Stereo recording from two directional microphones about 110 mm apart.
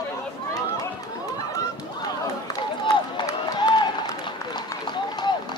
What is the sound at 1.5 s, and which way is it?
Run, 30° left (ahead or behind).